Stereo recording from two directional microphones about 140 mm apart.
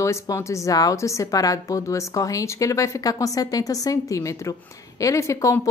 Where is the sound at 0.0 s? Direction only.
20° left (ahead or behind).